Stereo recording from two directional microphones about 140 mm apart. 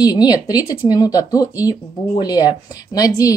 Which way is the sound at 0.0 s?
25° left (ahead or behind).